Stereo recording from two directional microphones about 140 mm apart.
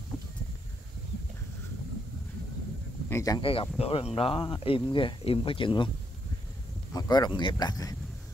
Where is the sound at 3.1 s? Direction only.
20° left (ahead or behind).